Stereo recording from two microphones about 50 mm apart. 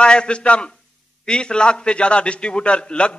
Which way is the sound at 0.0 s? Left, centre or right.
Centre.